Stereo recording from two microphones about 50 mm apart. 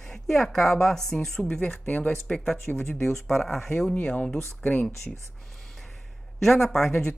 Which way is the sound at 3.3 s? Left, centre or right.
Centre.